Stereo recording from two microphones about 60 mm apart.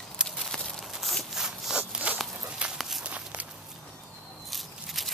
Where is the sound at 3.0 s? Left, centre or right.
Right.